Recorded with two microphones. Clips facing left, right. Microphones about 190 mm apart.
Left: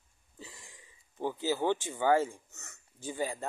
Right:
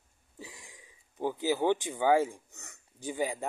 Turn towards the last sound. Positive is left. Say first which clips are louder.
# right 2 dB
turn(degrees=-15)  # may be behind; listen again after turning